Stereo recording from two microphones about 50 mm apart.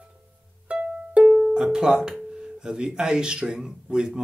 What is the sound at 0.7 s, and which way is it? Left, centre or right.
Music, centre.